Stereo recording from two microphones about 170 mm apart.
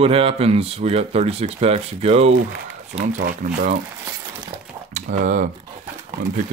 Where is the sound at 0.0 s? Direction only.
35° right (ahead or behind).